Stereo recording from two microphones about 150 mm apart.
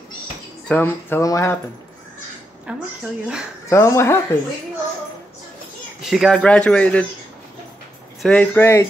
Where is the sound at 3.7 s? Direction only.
20° left (ahead or behind).